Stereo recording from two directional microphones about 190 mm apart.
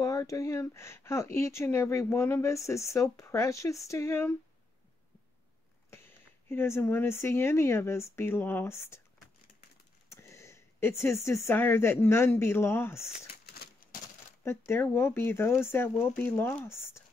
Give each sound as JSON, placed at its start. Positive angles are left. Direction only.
{"t": 0.0, "sound": "speech", "side_deg": 15}
{"t": 5.9, "sound": "speech", "side_deg": 15}
{"t": 10.0, "sound": "speech", "side_deg": 15}
{"t": 13.5, "sound": "typewriter", "side_deg": 55}
{"t": 14.7, "sound": "speech", "side_deg": 10}